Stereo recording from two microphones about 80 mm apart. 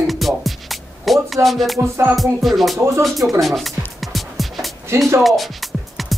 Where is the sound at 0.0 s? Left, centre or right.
Centre.